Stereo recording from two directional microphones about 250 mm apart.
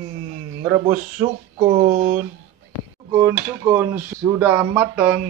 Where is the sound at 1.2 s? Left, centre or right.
Right.